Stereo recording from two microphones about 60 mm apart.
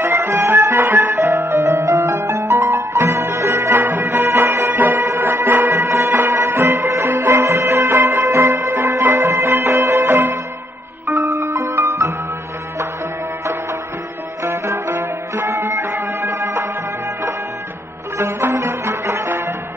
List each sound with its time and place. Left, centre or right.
0.0 s music: right
1.1 s music: right
11.1 s music: right
14.4 s music: right
18.1 s music: right